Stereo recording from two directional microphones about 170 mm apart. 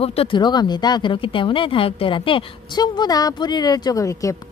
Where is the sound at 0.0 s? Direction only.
35° left (ahead or behind).